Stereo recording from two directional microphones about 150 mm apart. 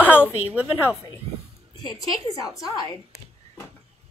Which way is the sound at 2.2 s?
25° left (ahead or behind).